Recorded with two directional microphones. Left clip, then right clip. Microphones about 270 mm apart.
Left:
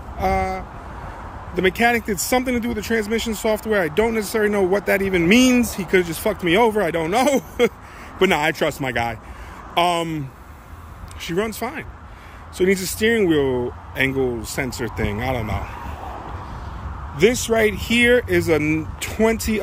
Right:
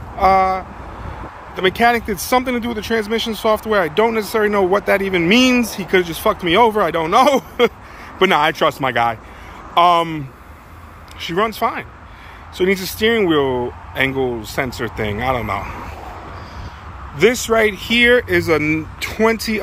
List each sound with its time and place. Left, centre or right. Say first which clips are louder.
0.2 s speech: right 8 dB; centre
17.2 s speech: right 3 dB; centre